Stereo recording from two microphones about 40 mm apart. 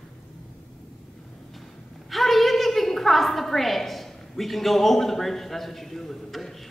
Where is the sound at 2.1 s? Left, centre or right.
Centre.